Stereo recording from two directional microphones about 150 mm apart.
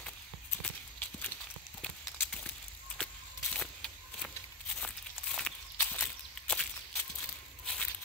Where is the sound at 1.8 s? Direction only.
5° left (ahead or behind).